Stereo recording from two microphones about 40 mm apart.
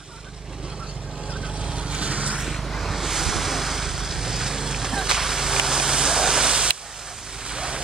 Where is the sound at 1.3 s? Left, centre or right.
Right.